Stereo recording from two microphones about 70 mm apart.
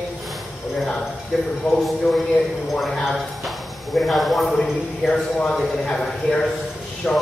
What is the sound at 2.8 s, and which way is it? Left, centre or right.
Speech, centre.